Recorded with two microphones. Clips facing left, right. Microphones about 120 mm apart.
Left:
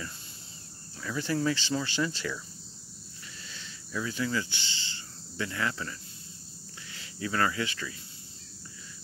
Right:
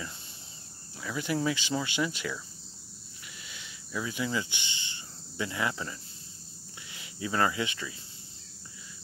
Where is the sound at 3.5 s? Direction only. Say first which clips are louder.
Even; 15° right (ahead or behind).